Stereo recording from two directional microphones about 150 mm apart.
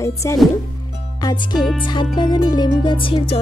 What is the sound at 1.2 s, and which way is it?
Speech, 25° left (ahead or behind).